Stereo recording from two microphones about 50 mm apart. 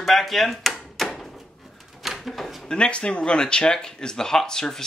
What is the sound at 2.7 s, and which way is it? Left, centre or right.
Speech, left.